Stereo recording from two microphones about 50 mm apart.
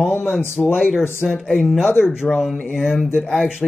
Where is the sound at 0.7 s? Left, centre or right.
Centre.